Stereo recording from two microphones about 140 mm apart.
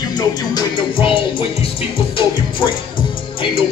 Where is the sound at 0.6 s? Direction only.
40° left (ahead or behind).